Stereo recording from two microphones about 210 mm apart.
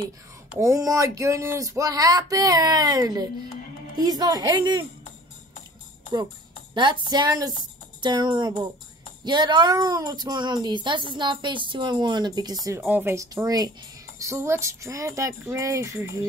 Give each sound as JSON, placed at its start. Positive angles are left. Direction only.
{"t": 0.6, "sound": "speech", "side_deg": -15}
{"t": 6.7, "sound": "speech", "side_deg": -20}